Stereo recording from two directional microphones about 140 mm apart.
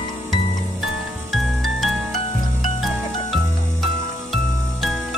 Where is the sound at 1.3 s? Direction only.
Centre (ahead or behind).